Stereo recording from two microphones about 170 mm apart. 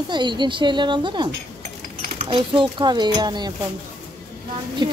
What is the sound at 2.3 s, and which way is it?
Speech, 30° right (ahead or behind).